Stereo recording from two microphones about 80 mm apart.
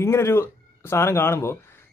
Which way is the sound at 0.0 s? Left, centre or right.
Left.